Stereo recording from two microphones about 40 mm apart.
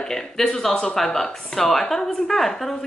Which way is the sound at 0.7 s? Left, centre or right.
Centre.